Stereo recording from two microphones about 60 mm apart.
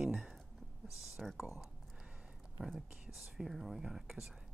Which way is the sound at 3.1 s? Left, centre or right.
Centre.